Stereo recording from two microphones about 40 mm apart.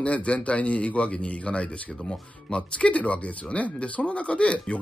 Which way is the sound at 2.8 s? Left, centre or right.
Left.